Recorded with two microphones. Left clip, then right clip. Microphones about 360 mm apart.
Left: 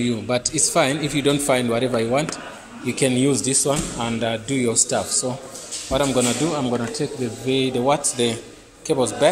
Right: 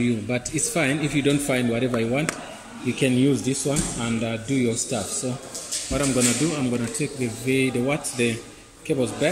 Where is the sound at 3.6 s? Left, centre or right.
Left.